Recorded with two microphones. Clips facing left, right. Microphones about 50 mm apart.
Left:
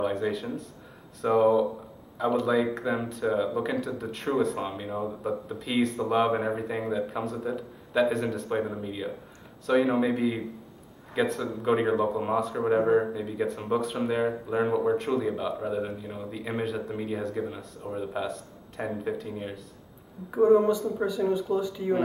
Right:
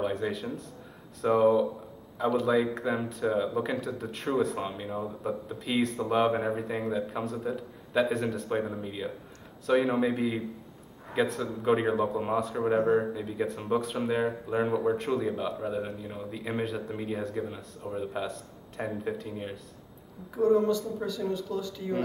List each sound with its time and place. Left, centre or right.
0.0 s speech: centre
20.2 s speech: centre